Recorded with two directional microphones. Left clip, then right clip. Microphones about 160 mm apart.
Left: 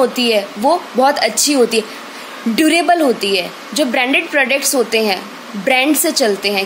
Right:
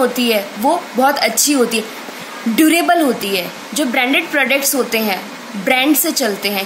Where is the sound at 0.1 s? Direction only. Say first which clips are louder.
Left 1 dB; 40° left (ahead or behind).